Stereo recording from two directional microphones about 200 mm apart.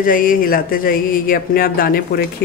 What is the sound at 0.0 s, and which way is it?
Speech, 45° left (ahead or behind).